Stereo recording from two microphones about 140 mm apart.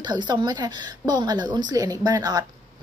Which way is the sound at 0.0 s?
30° right (ahead or behind).